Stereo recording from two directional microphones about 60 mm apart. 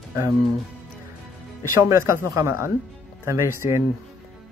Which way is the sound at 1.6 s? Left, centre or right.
Right.